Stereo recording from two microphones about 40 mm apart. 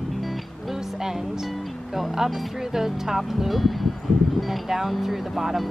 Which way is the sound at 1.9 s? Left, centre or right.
Centre.